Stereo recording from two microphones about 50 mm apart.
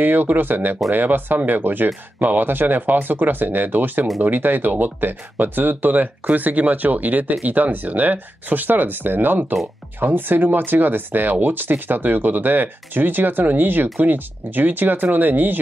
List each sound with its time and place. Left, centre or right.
0.0 s speech: right